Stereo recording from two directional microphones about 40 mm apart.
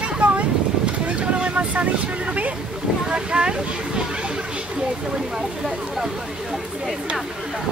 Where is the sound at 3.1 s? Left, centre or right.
Right.